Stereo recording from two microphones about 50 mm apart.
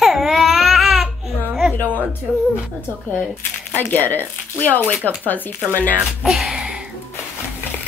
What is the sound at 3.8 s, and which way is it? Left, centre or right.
Speech, left.